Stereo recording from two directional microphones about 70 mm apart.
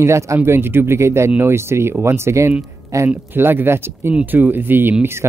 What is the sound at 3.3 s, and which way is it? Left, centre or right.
Speech, right.